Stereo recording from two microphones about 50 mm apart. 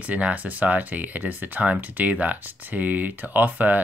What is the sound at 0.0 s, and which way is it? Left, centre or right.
Speech, right.